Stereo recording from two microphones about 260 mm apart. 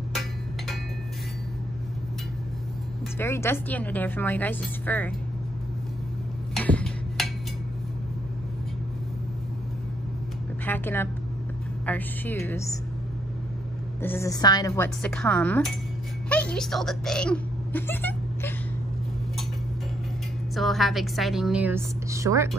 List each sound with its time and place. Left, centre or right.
3.2 s a woman's voice: centre
6.5 s a sound: centre
10.6 s a sound: centre
11.8 s a woman's voice: centre
14.0 s a woman's voice: centre
15.0 s a woman's voice: centre
20.5 s a woman's voice: centre